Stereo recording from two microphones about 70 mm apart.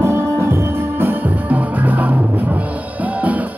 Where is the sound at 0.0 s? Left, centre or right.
Right.